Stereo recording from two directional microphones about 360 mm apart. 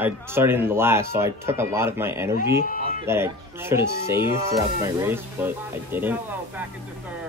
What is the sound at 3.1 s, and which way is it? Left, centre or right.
Speech, centre.